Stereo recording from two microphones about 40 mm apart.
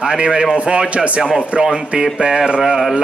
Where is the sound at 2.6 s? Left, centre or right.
Centre.